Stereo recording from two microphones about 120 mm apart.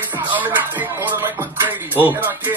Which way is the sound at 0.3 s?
15° right (ahead or behind).